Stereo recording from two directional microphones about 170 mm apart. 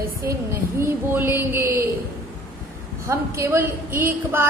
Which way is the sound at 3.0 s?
15° right (ahead or behind).